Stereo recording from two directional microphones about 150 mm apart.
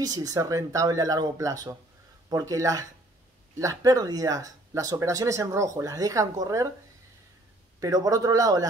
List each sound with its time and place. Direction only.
0.0 s speech: 25° right (ahead or behind)
7.8 s speech: 25° right (ahead or behind)